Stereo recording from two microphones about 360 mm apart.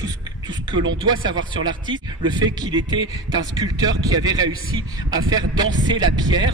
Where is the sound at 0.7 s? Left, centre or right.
Right.